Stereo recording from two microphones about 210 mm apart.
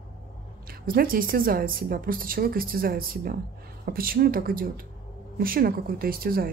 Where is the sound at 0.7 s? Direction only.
45° right (ahead or behind).